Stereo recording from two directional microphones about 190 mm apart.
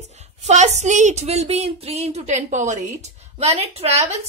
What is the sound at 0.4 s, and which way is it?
A woman's voice, 35° right (ahead or behind).